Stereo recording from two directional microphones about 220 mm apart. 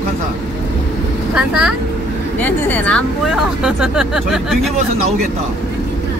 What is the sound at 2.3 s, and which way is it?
Speech, 5° left (ahead or behind).